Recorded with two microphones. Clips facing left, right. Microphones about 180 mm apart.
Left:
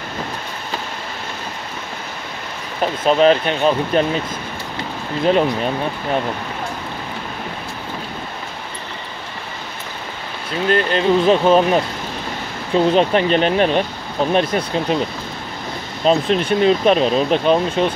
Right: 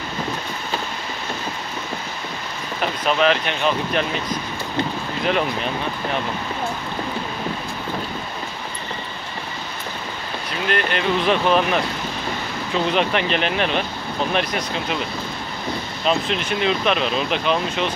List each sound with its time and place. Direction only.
3.0 s speech: 35° left (ahead or behind)
10.7 s speech: 30° left (ahead or behind)
16.0 s speech: 40° left (ahead or behind)